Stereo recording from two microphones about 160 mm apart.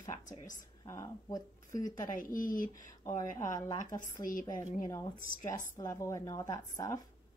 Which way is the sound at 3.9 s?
55° left (ahead or behind).